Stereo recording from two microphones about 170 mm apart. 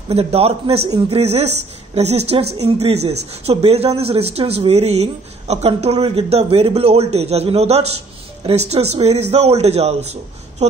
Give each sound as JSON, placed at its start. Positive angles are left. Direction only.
{"t": 0.1, "sound": "speech", "side_deg": -35}